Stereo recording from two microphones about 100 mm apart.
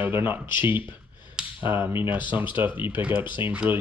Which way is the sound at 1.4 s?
5° right (ahead or behind).